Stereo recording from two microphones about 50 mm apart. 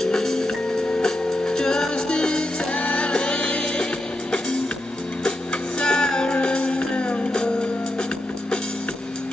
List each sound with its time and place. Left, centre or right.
0.0 s music: centre
5.8 s music: centre